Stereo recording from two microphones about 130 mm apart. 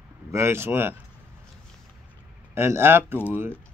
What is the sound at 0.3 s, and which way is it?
Speech, 20° right (ahead or behind).